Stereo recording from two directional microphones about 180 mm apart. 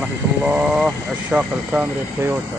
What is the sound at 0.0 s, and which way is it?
Speech, 5° right (ahead or behind).